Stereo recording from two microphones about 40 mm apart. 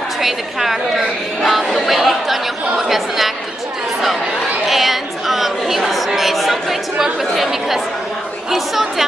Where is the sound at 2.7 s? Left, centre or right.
Centre.